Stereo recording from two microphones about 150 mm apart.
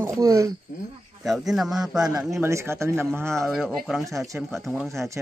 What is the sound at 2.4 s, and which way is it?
Speech, 20° right (ahead or behind).